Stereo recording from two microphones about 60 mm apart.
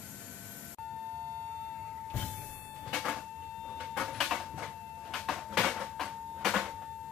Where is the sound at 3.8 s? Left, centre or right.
Centre.